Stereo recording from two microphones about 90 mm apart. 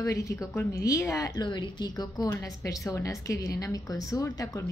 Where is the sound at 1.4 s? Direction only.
55° left (ahead or behind).